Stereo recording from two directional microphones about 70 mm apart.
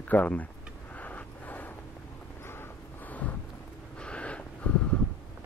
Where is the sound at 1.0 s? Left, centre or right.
Left.